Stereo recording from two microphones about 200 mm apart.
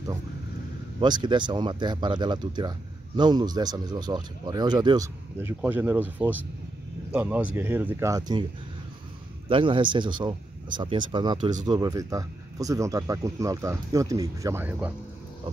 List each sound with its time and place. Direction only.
1.0 s speech: 20° right (ahead or behind)
9.5 s speech: 25° right (ahead or behind); by 14.9 s 10° right (ahead or behind)